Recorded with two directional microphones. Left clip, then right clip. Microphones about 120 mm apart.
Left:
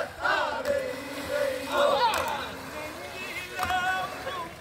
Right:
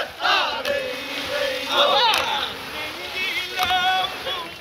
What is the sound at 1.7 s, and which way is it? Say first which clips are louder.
Crowd: right 6 dB; 5° left (ahead or behind).